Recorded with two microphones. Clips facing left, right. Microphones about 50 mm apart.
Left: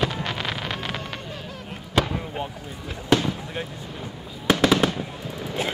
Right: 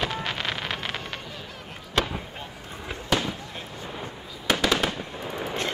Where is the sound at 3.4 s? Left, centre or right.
Centre.